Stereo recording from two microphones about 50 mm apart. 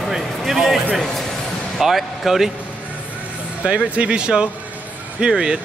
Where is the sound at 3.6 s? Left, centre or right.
Right.